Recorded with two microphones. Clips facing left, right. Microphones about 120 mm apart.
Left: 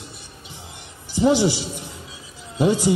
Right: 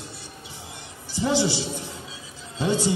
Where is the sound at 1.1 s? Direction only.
15° left (ahead or behind).